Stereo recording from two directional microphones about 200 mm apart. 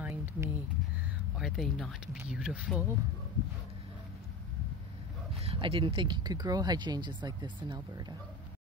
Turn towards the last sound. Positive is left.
turn(degrees=-20)  # may be behind; listen again after turning